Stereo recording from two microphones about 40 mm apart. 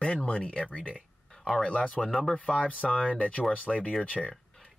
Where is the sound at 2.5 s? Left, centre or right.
Left.